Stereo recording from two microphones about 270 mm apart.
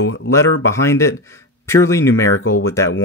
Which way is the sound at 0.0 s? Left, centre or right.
Left.